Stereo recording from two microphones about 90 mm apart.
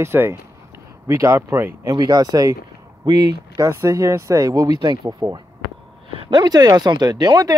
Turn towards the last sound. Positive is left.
turn(degrees=-45)  # may be behind; listen again after turning